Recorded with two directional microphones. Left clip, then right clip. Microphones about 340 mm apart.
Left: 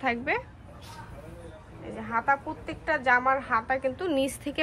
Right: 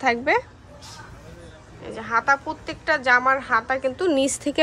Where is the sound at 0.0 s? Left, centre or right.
Centre.